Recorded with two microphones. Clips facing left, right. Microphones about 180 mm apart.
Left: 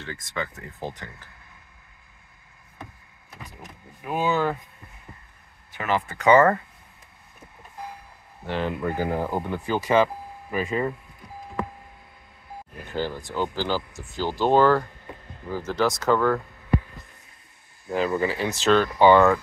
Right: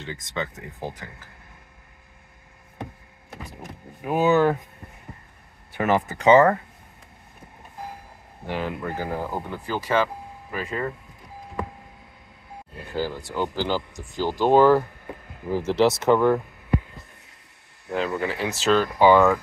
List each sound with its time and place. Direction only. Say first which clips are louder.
0.0 s speech: right 1 dB; 20° right (ahead or behind)
4.0 s speech: right 5 dB; 45° right (ahead or behind)
5.7 s speech: right 4 dB; 45° right (ahead or behind)
6.1 s speech: right 1 dB; 25° right (ahead or behind)
8.5 s speech: left 1 dB; 5° right (ahead or behind)
8.8 s speech: left 3 dB; 15° left (ahead or behind)
12.9 s speech: right 1 dB; 10° right (ahead or behind)
15.6 s speech: right 4 dB; 30° right (ahead or behind)
18.1 s speech: left 2 dB; centre (ahead or behind)